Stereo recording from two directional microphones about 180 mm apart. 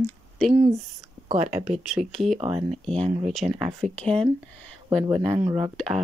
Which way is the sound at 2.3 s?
30° right (ahead or behind).